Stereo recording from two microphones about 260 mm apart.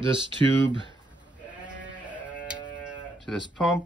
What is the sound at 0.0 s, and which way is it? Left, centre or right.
Speech, centre.